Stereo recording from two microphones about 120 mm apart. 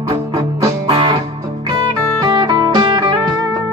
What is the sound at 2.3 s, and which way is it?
Music, 40° right (ahead or behind).